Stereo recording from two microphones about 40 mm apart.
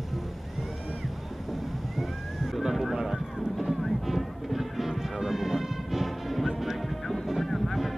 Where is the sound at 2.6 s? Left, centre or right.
Centre.